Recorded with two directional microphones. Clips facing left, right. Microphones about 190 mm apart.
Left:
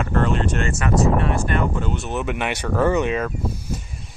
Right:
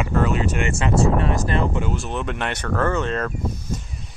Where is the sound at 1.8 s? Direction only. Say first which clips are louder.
Even; centre (ahead or behind).